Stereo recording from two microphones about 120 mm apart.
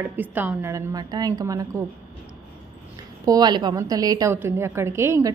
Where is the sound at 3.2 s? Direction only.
35° right (ahead or behind).